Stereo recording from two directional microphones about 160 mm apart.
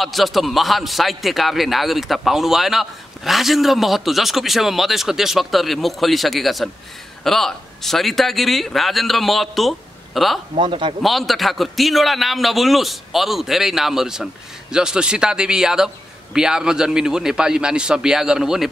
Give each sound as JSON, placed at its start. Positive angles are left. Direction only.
{"t": 0.0, "sound": "a man's voice", "side_deg": 0}
{"t": 10.5, "sound": "speech", "side_deg": -30}
{"t": 11.0, "sound": "a man's voice", "side_deg": 0}